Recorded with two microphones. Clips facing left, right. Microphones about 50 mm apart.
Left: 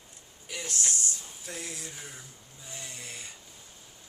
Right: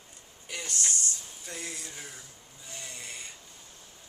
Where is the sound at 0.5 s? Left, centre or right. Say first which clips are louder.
Even; centre.